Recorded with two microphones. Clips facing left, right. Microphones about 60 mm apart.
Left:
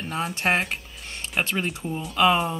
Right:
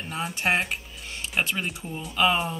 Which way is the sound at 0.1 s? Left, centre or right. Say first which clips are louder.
Left 2 dB; centre.